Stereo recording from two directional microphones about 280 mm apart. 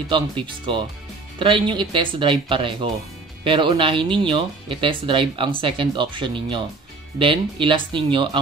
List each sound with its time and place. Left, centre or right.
0.1 s speech: centre